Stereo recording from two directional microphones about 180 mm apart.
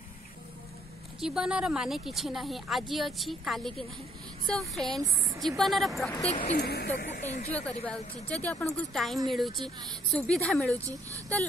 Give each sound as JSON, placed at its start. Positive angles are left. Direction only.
{"t": 1.2, "sound": "a woman's voice", "side_deg": -5}
{"t": 6.2, "sound": "speech", "side_deg": 35}
{"t": 6.6, "sound": "speech", "side_deg": 65}
{"t": 7.0, "sound": "speech", "side_deg": 45}
{"t": 7.8, "sound": "a woman's voice", "side_deg": 10}
{"t": 9.6, "sound": "speech", "side_deg": -25}
{"t": 10.1, "sound": "a woman's voice", "side_deg": 5}